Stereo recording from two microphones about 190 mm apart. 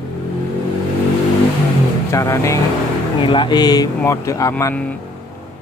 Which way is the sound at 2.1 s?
15° left (ahead or behind).